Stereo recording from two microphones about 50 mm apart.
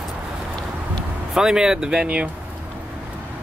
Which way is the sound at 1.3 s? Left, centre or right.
Centre.